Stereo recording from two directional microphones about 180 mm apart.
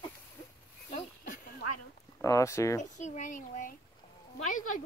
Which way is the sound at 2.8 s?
40° left (ahead or behind).